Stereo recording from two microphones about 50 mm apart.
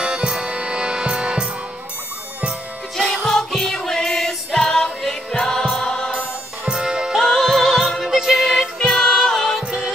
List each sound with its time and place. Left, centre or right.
0.0 s music: centre
3.3 s music: centre
5.4 s choir: centre
6.7 s music: centre
7.2 s music: centre